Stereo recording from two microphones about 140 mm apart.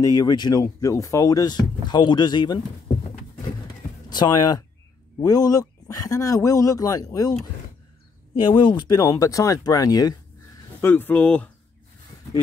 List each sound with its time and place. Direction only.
0.0 s speech: 25° left (ahead or behind)
4.1 s speech: 30° left (ahead or behind)
8.5 s speech: 35° left (ahead or behind)
10.8 s speech: 15° left (ahead or behind)